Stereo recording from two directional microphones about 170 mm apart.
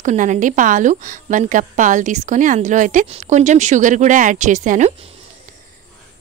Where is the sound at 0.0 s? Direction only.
45° right (ahead or behind).